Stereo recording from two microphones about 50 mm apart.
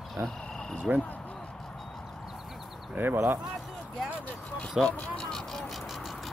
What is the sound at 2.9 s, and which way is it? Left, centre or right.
Speech, right.